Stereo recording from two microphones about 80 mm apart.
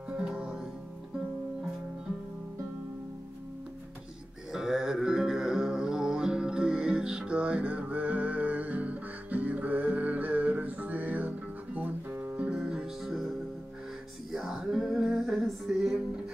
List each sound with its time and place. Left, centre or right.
0.1 s music: centre
4.5 s music: centre; by 12.4 s right
12.4 s music: centre
14.3 s music: centre